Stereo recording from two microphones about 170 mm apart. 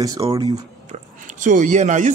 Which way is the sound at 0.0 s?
20° right (ahead or behind).